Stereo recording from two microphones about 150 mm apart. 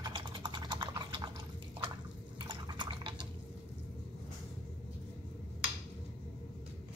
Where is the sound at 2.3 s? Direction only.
30° right (ahead or behind).